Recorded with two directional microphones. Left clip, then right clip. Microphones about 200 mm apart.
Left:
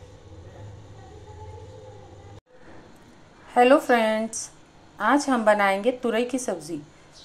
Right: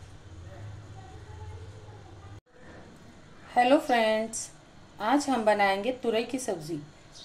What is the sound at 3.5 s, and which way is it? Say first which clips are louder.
A woman's voice: left 5 dB; 15° left (ahead or behind).